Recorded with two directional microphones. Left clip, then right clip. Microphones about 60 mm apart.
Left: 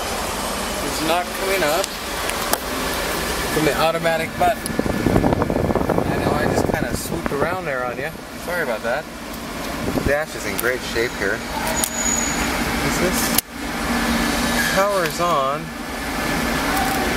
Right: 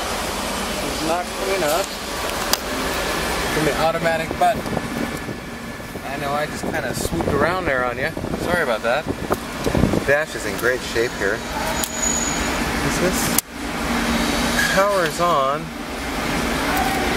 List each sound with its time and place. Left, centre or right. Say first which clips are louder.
3.6 s speech: left 2 dB; centre
7.4 s speech: right 4 dB; right
10.0 s speech: right 2 dB; centre
14.8 s speech: right 1 dB; centre